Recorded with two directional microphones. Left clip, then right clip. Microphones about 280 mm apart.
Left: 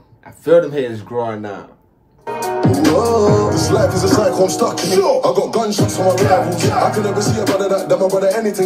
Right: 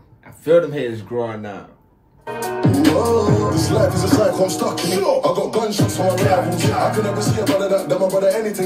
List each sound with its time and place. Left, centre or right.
0.5 s speech: centre
2.4 s speech: left